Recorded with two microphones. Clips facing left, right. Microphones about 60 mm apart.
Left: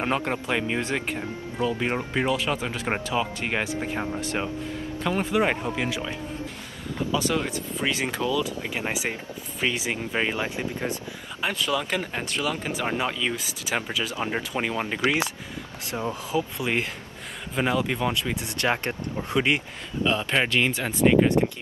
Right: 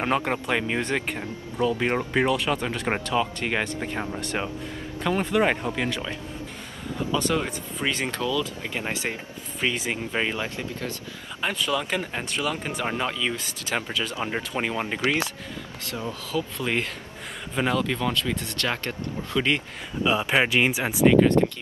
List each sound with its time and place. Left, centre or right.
0.0 s speech: centre
8.2 s speech: centre
10.3 s speech: centre
11.4 s speech: centre
15.9 s speech: left
16.5 s speech: centre
20.0 s speech: centre
21.1 s speech: centre